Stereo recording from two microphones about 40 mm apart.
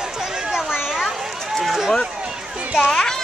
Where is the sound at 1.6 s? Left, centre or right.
Centre.